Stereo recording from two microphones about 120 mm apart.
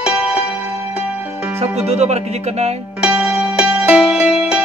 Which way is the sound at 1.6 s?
65° right (ahead or behind).